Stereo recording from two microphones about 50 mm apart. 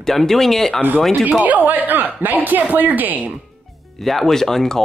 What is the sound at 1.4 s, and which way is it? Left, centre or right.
Speech, right.